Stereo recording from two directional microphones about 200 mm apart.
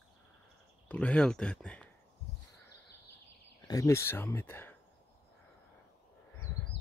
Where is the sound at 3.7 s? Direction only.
15° left (ahead or behind).